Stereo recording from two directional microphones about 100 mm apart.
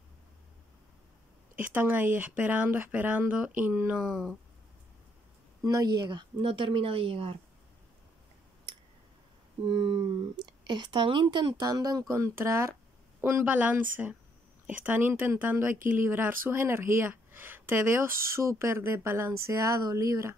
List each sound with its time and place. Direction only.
1.5 s speech: 15° right (ahead or behind)
4.0 s speech: 5° right (ahead or behind)
5.6 s speech: 35° right (ahead or behind)
6.0 s speech: 50° right (ahead or behind)
6.4 s speech: 60° right (ahead or behind)
9.6 s speech: 55° right (ahead or behind); by 13.5 s 25° right (ahead or behind)
13.5 s speech: 15° right (ahead or behind); by 20.3 s 30° right (ahead or behind)